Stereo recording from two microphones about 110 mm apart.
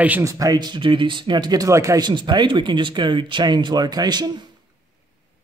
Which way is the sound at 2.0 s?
45° right (ahead or behind).